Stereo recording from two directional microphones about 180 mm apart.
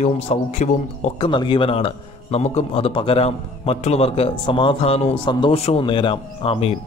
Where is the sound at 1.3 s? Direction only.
25° left (ahead or behind).